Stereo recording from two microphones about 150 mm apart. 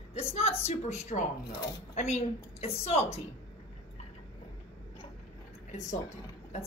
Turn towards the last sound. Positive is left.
turn(degrees=55)  # may be behind; listen again after turning